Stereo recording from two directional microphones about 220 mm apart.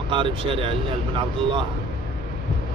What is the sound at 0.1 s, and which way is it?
Speech, 25° right (ahead or behind).